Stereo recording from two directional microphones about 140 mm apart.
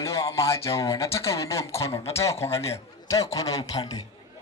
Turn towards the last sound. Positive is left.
turn(degrees=25)  # may be behind; listen again after turning